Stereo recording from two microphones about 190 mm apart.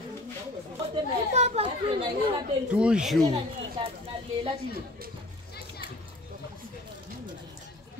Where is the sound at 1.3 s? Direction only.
35° right (ahead or behind).